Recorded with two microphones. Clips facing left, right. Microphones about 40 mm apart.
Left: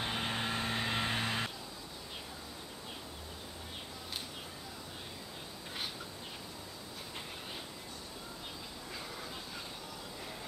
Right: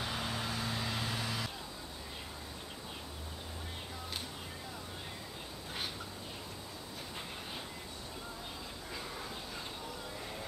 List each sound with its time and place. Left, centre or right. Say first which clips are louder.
0.0 s vehicle: left 2 dB; left
8.9 s train: right 2 dB; centre